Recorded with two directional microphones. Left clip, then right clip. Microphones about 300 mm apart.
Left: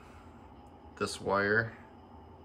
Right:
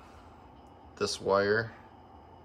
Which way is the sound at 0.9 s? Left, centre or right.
Centre.